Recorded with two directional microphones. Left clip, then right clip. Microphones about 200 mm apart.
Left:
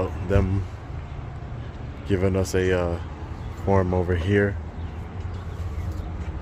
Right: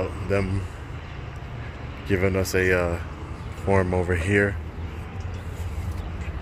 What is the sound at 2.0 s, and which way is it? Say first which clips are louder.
Speech: even; 15° left (ahead or behind).